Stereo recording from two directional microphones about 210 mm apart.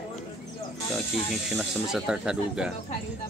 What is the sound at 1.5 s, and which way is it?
Speech, 5° right (ahead or behind).